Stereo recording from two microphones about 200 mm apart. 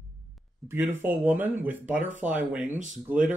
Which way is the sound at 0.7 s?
10° right (ahead or behind).